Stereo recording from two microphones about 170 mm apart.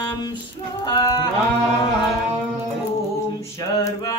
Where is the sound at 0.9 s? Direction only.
25° left (ahead or behind).